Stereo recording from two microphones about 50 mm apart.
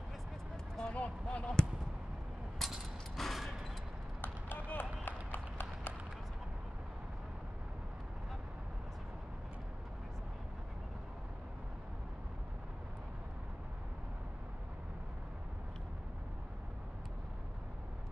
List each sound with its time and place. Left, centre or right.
0.7 s vehicle: left
2.6 s a sound: centre
4.2 s run: left